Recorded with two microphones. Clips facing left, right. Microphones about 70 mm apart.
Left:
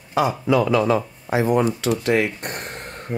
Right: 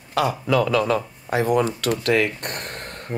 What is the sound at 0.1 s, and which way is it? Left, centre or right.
A man's voice, right.